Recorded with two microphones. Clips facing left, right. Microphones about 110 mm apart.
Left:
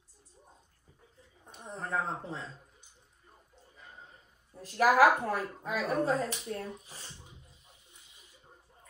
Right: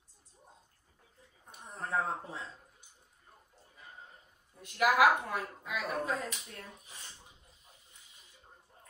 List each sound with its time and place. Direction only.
1.8 s speech: 5° right (ahead or behind)
4.6 s speech: 35° left (ahead or behind)